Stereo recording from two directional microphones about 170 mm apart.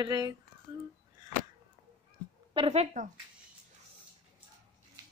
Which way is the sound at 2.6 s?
35° right (ahead or behind).